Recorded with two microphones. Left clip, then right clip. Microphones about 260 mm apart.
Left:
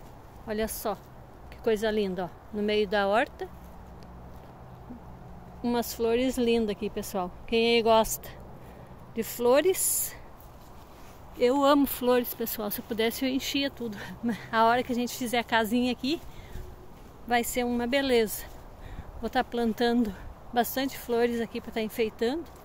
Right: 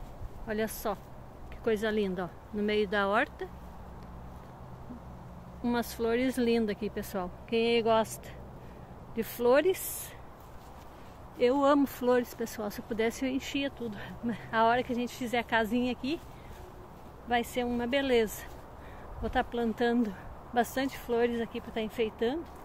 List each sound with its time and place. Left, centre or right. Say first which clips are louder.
0.5 s speech: left 2 dB; centre
5.6 s speech: left 3 dB; centre
11.3 s speech: left 3 dB; centre
17.3 s speech: left 3 dB; centre